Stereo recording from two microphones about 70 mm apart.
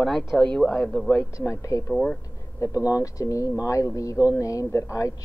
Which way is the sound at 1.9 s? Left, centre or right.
Centre.